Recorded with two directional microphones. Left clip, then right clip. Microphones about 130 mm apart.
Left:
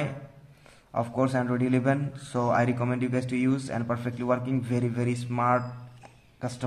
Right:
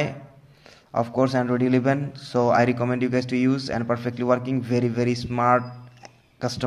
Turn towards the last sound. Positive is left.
turn(degrees=-40)  # may be behind; listen again after turning